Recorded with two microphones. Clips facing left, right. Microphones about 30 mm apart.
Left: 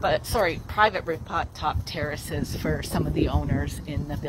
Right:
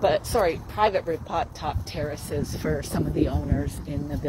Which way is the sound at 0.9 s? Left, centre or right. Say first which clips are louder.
Right 2 dB; centre.